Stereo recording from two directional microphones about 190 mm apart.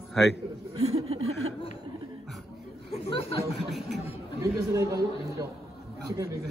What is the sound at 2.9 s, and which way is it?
Speech, 35° left (ahead or behind).